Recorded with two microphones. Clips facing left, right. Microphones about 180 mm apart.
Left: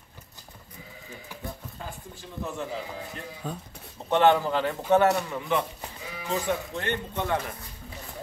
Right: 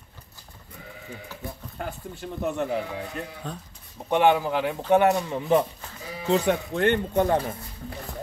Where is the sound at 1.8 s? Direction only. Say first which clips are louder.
Right 6 dB; 65° right (ahead or behind).